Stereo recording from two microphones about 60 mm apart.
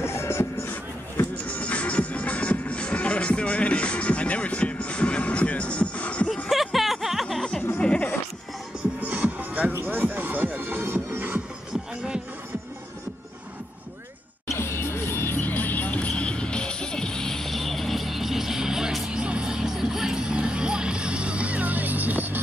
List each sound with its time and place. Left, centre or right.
0.0 s music: left
1.3 s music: left
6.5 s music: centre
7.8 s music: centre
9.0 s music: right
14.6 s music: left; by 22.4 s right